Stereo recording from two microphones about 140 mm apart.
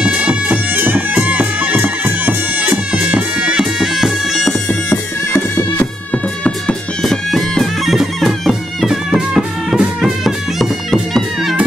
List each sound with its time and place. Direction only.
0.0 s bagpipes: 10° right (ahead or behind)
4.8 s music: 20° left (ahead or behind)
6.1 s bagpipes: 10° left (ahead or behind)